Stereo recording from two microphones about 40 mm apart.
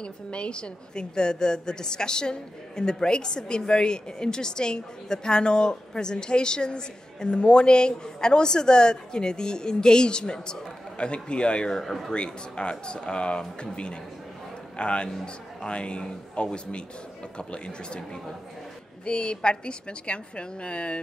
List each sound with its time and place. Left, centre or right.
0.0 s a woman's voice: left
11.8 s speech: centre
12.1 s a woman's voice: left
19.0 s a woman's voice: left